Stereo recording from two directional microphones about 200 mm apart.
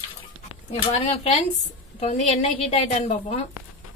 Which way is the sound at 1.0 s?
30° left (ahead or behind).